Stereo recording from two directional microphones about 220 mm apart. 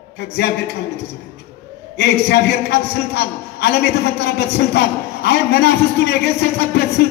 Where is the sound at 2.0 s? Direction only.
50° left (ahead or behind).